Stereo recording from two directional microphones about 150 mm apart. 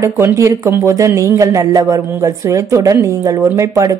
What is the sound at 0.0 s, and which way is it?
A woman's voice, 20° right (ahead or behind).